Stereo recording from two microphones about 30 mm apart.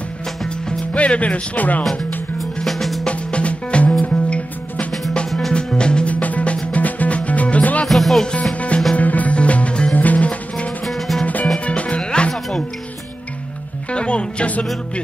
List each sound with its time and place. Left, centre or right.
0.9 s music: left
2.6 s drum: centre
3.1 s music: left
5.7 s music: left
6.0 s music: left
7.9 s music: centre
8.5 s music: left
8.9 s music: left
9.3 s music: left
9.9 s music: left
10.9 s music: centre
11.5 s music: left
12.0 s music: left
13.9 s music: left